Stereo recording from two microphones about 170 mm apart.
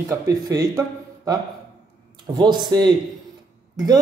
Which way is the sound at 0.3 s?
20° right (ahead or behind).